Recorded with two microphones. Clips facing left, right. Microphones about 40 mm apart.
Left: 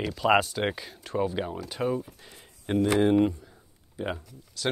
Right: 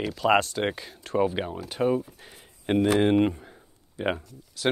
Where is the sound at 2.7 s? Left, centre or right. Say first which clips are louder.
Right 3 dB; right.